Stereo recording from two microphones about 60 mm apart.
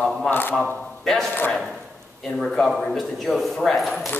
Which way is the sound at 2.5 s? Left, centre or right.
Centre.